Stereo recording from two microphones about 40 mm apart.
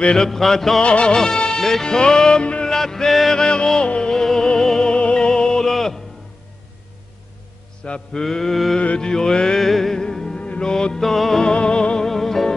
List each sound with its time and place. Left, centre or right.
0.1 s music: centre
0.8 s music: left; by 3.3 s centre
3.3 s music: centre
4.9 s music: left
5.7 s music: centre
8.1 s music: centre
8.7 s mantra: left
9.6 s music: centre
10.0 s music: centre
11.4 s music: left
12.0 s music: centre